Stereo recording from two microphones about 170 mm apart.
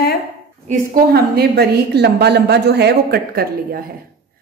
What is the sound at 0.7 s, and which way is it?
A woman's voice, 60° right (ahead or behind).